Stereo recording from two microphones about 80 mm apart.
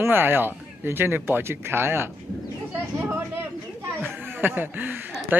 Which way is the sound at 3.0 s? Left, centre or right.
Right.